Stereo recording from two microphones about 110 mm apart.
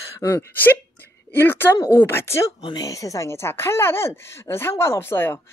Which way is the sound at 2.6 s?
35° left (ahead or behind).